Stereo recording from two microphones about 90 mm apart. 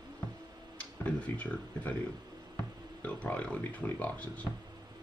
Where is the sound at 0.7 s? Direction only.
15° left (ahead or behind).